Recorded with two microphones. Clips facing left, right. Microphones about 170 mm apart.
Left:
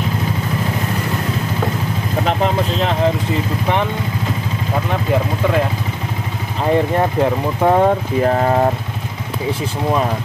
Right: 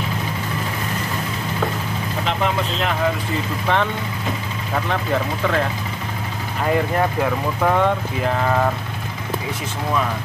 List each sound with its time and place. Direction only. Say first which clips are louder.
2.2 s vehicle: left 4 dB; 35° left (ahead or behind)
6.6 s speech: left 4 dB; 25° left (ahead or behind)
7.8 s speech: left 5 dB; 40° left (ahead or behind)